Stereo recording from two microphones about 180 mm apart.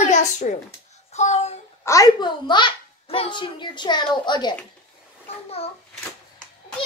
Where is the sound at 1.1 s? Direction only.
40° left (ahead or behind).